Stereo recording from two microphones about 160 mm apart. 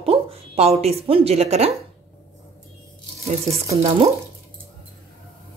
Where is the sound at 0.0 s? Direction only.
40° right (ahead or behind).